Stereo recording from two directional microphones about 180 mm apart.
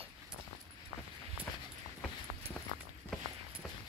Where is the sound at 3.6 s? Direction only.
Centre (ahead or behind).